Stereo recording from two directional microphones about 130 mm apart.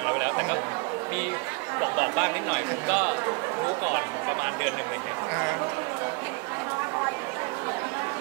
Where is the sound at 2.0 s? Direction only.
15° right (ahead or behind).